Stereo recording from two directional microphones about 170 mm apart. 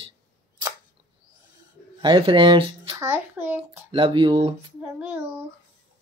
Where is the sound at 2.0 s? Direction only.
25° right (ahead or behind).